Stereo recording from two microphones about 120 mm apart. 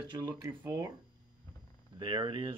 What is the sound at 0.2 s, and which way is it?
Speech, 25° right (ahead or behind).